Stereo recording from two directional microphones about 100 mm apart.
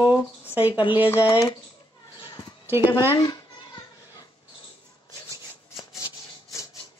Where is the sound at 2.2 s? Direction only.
45° left (ahead or behind).